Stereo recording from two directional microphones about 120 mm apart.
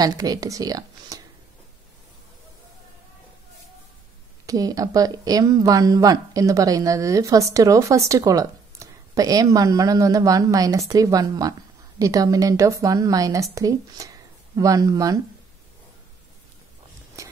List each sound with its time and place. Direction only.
0.0 s a woman's voice: 30° right (ahead or behind)
4.5 s speech: 30° right (ahead or behind)
17.2 s a sound: 25° right (ahead or behind)